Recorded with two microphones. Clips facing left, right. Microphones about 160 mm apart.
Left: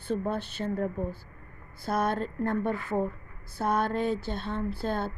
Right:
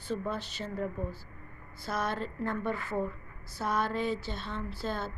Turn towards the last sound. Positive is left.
turn(degrees=55)  # may be behind; listen again after turning